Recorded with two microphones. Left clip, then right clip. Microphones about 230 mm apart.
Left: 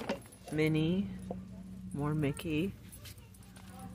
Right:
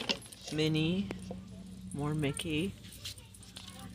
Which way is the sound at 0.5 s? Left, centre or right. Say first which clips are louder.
Even; centre.